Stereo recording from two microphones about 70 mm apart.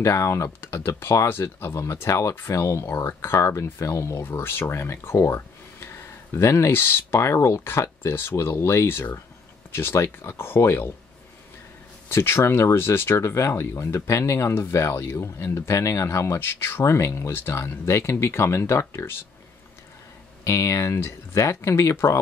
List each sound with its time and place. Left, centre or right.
0.0 s speech: left
12.1 s speech: left
20.4 s speech: left